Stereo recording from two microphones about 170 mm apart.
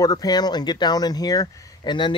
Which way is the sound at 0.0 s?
20° left (ahead or behind).